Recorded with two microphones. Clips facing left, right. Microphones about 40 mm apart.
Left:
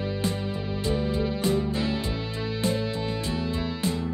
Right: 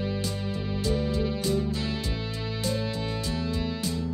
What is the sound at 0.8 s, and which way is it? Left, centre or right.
Music, left.